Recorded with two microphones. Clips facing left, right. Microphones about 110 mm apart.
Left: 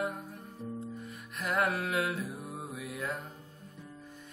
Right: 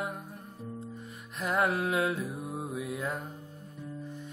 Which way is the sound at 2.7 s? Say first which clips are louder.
Right 2 dB; 20° right (ahead or behind).